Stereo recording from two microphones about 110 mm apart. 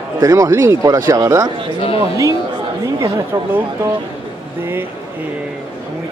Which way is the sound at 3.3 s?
25° right (ahead or behind).